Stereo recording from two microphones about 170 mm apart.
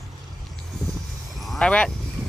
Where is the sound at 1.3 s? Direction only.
Centre (ahead or behind).